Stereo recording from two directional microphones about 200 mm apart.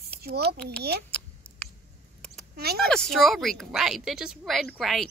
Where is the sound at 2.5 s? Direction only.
50° right (ahead or behind).